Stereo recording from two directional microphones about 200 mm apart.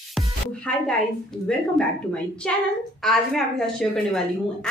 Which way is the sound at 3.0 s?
Centre (ahead or behind).